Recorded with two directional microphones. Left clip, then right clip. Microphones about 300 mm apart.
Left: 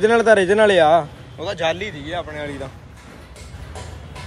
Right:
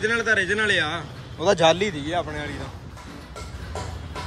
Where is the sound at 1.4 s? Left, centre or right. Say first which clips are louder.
Right 4 dB; centre.